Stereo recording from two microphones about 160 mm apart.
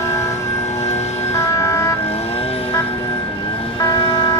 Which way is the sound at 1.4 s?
20° left (ahead or behind).